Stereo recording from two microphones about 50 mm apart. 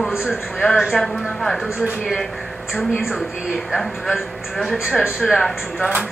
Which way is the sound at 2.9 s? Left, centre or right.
Centre.